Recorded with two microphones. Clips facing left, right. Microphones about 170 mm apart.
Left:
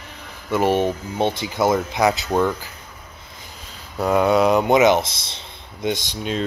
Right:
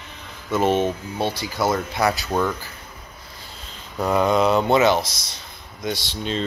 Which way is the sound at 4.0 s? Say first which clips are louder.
Left 2 dB; 10° left (ahead or behind).